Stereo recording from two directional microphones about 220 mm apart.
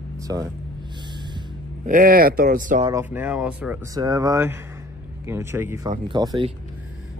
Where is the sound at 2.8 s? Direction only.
15° right (ahead or behind).